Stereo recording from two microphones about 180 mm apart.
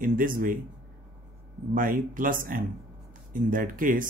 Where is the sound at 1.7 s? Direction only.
50° right (ahead or behind).